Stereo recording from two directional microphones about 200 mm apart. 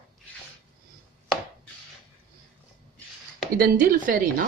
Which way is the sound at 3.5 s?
45° right (ahead or behind).